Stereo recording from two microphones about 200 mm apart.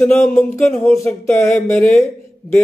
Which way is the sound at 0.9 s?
15° left (ahead or behind).